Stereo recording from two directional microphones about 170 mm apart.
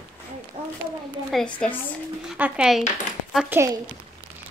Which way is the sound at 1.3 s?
5° left (ahead or behind).